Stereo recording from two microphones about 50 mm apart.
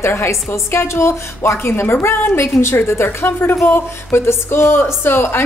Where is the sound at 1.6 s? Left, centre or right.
Left.